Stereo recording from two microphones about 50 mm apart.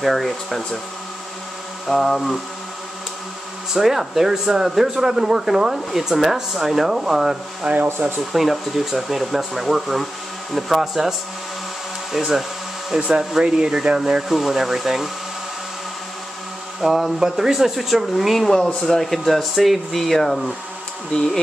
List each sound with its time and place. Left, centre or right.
0.0 s speech: centre
1.9 s a sound: centre
3.7 s speech: centre
7.6 s speech: right
8.3 s speech: centre
16.8 s speech: centre